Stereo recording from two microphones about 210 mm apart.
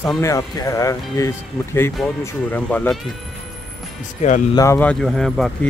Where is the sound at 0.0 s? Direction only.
15° left (ahead or behind).